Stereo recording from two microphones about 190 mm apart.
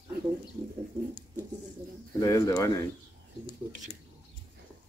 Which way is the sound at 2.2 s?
15° left (ahead or behind).